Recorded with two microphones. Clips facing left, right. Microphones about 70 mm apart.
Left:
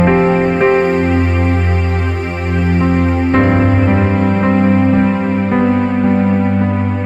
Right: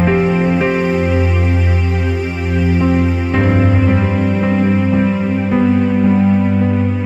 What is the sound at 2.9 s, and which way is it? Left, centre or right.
Music, centre.